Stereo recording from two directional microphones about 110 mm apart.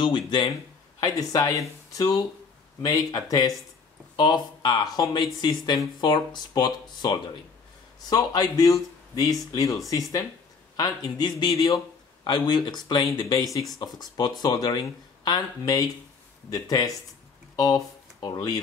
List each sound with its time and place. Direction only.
0.0 s speech: 45° left (ahead or behind)
1.0 s speech: 35° left (ahead or behind)